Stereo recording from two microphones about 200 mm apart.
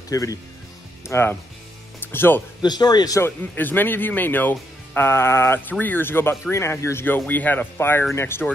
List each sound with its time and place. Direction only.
0.1 s a man's voice: 15° left (ahead or behind)